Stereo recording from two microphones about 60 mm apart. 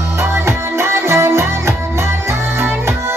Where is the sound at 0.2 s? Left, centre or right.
Right.